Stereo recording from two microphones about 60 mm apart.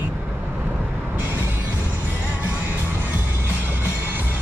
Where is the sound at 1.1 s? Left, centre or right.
Right.